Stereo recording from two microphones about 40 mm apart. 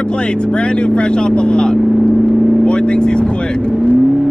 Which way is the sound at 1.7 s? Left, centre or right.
Right.